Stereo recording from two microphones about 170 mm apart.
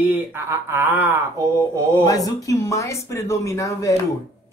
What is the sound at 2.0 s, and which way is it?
Speech, 20° left (ahead or behind).